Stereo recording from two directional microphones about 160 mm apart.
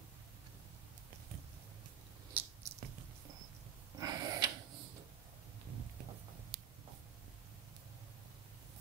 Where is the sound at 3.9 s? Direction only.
25° right (ahead or behind).